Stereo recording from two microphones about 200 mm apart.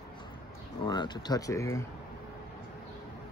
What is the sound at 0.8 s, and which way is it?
Speech, 20° left (ahead or behind).